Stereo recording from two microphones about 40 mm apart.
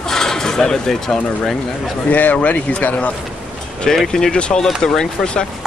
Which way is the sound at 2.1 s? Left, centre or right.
Left.